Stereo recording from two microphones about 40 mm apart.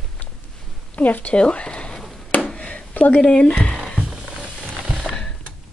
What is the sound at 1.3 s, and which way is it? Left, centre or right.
Speech, left.